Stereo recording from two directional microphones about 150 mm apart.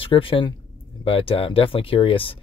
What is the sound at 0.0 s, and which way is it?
Speech, 35° left (ahead or behind).